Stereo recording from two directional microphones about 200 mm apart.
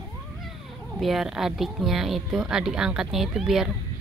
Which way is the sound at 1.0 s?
Centre (ahead or behind).